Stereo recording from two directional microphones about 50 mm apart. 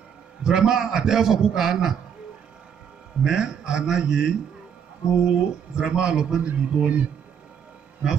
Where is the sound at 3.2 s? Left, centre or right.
Centre.